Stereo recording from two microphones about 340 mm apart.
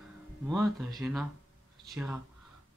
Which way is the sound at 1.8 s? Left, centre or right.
Centre.